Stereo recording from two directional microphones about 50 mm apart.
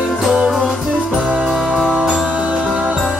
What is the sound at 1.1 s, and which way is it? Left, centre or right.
Music, right.